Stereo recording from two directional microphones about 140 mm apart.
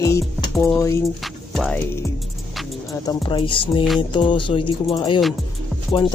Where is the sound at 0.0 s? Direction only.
20° left (ahead or behind).